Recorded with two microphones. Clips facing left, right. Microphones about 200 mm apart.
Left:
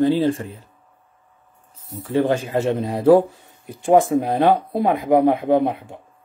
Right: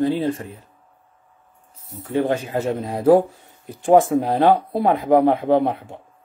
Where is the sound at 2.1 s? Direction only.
30° left (ahead or behind).